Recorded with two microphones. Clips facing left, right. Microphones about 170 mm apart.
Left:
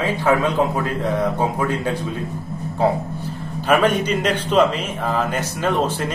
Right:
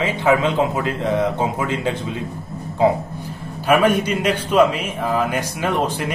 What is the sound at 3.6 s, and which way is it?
Speech, 10° right (ahead or behind).